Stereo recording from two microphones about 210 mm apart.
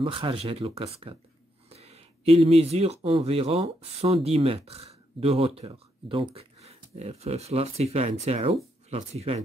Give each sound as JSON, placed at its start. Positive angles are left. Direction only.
{"t": 0.0, "sound": "speech", "side_deg": -25}